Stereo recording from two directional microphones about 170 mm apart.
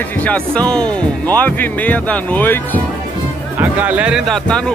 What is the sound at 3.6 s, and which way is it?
Speech, 10° right (ahead or behind).